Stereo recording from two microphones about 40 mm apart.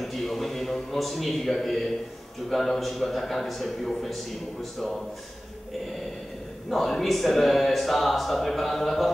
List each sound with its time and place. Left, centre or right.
0.0 s a sound: centre
2.5 s speech: centre
6.7 s speech: centre